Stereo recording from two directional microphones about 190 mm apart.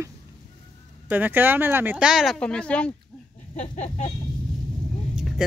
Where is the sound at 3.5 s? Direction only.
40° left (ahead or behind).